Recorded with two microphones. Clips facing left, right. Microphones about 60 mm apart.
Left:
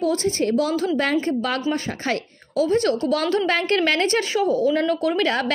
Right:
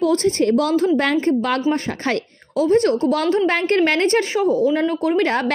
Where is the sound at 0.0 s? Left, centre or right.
Right.